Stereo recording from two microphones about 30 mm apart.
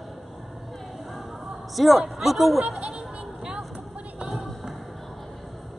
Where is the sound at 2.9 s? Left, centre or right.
Right.